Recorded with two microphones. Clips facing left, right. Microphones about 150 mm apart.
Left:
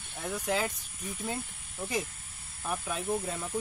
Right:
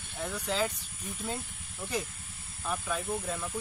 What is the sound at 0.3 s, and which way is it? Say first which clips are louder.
Speech: left 1 dB; 15° left (ahead or behind).